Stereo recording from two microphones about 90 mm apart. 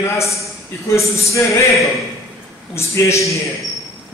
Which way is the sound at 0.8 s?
35° left (ahead or behind).